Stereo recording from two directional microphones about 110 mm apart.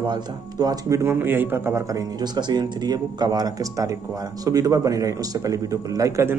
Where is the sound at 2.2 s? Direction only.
40° right (ahead or behind).